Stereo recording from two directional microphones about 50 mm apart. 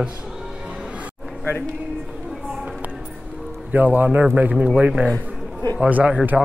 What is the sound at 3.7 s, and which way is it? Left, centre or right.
Speech, right.